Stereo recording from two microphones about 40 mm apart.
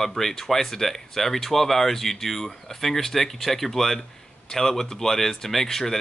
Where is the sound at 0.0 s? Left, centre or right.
Centre.